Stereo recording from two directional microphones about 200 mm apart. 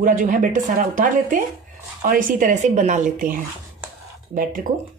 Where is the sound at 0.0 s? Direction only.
40° right (ahead or behind).